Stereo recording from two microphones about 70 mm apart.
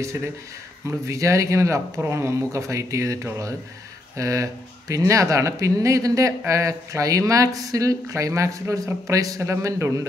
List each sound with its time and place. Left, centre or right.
0.8 s speech: right